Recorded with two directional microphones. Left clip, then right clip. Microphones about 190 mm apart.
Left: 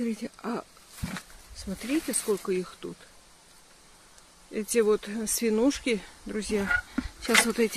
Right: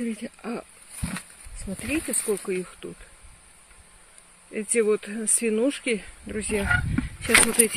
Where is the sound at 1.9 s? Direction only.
5° right (ahead or behind).